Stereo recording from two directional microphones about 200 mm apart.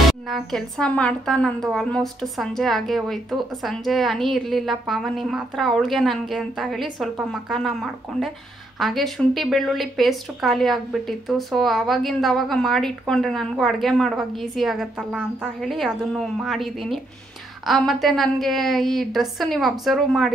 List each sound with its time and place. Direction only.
0.3 s a woman's voice: centre (ahead or behind)